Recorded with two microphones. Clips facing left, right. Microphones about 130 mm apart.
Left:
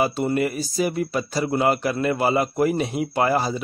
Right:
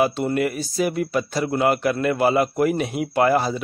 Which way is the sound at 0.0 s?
Centre (ahead or behind).